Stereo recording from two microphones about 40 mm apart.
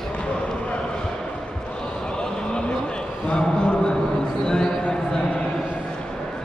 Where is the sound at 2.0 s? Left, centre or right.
Centre.